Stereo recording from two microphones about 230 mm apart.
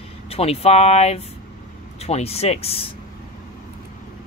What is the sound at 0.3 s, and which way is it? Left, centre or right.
Speech, left.